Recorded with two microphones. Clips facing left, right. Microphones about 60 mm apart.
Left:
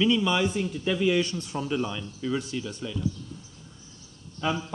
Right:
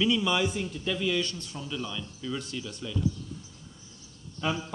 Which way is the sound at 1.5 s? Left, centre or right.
Left.